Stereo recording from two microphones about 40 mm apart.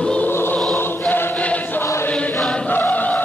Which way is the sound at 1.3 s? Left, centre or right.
Left.